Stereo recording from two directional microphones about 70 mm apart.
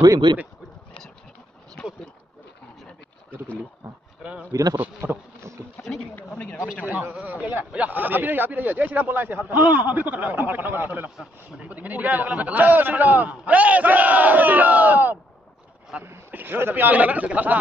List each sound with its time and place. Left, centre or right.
0.3 s speech: right
1.8 s speech: centre
4.5 s speech: right
5.0 s bee: right
6.1 s speech: centre
6.6 s speech: right